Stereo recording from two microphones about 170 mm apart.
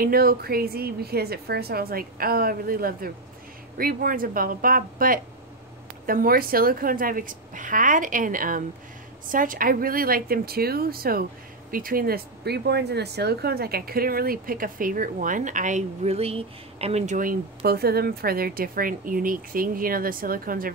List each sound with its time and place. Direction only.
0.0 s a woman's voice: 60° right (ahead or behind)